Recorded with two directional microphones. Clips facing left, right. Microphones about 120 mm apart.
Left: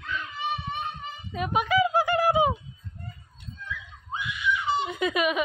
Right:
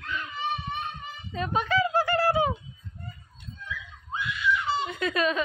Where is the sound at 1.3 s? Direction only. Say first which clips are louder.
Left 2 dB; 10° left (ahead or behind).